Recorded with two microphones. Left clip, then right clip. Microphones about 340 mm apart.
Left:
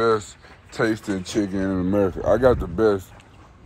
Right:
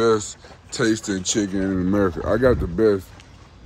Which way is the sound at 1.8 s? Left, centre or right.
Centre.